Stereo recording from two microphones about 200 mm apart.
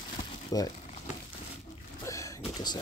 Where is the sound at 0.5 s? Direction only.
20° left (ahead or behind).